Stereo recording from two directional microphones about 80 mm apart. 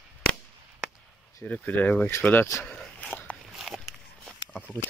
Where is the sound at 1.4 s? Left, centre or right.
Left.